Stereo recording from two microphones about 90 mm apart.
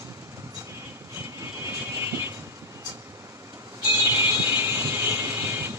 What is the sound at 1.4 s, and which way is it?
Vehicle, 30° right (ahead or behind).